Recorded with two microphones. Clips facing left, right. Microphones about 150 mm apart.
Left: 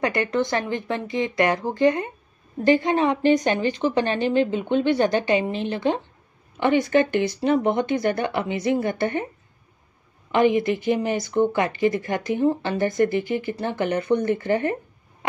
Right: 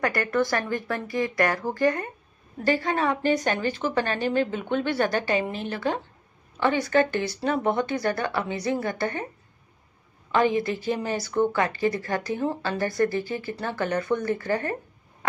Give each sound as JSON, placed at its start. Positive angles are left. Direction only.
{"t": 0.0, "sound": "speech", "side_deg": 20}
{"t": 4.2, "sound": "speech", "side_deg": -45}
{"t": 4.8, "sound": "speech", "side_deg": 20}
{"t": 10.3, "sound": "speech", "side_deg": 20}